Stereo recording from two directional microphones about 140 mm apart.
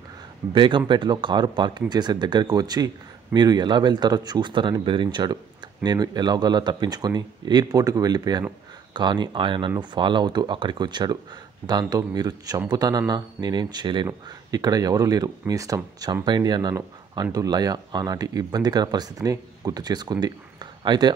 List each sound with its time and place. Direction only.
0.6 s speech: 35° right (ahead or behind)